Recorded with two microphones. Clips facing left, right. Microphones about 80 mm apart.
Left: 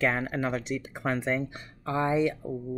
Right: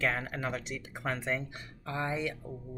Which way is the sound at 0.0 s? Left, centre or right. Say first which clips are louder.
Left 5 dB; left.